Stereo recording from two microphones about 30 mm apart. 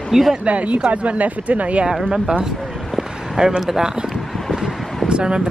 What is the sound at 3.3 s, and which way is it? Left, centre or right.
Speech, right.